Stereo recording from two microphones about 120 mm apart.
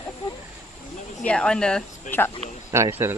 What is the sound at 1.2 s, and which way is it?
Speech, 10° left (ahead or behind).